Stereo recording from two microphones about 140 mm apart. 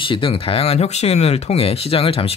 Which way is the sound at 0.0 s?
40° left (ahead or behind).